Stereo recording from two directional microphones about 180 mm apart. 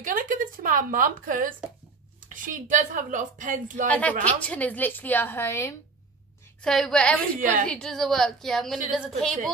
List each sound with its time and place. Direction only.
0.0 s a woman's voice: 50° right (ahead or behind)
3.8 s a woman's voice: 10° left (ahead or behind)
6.6 s a woman's voice: 5° left (ahead or behind)